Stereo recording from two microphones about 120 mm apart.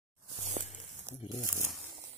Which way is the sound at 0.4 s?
80° right.